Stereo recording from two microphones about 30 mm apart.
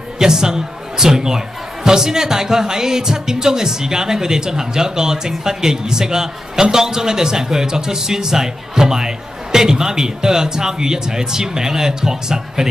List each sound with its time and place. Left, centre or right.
0.2 s a man's voice: right